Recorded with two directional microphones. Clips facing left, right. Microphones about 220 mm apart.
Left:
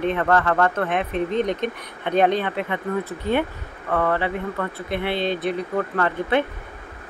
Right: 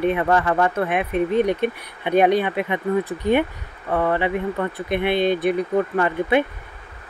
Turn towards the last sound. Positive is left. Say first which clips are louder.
# right 2 dB
turn(degrees=-15)  # may be behind; listen again after turning